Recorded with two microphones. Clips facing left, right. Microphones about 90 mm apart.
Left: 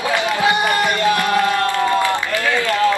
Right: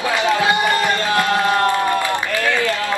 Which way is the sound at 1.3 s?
20° right (ahead or behind).